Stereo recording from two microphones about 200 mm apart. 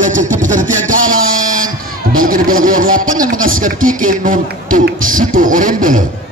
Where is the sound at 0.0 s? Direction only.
40° right (ahead or behind).